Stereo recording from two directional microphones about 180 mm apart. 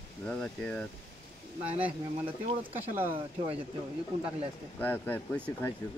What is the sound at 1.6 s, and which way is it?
Speech, 10° right (ahead or behind).